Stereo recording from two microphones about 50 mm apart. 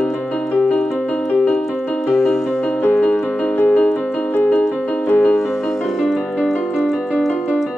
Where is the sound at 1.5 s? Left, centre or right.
Centre.